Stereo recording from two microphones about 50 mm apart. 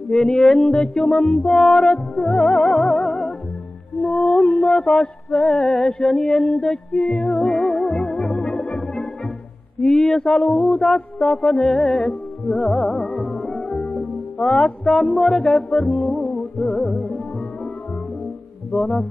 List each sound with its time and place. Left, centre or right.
0.1 s music: centre
1.5 s music: centre
8.5 s music: left
9.8 s music: centre
12.0 s music: left
12.5 s music: centre
13.7 s music: left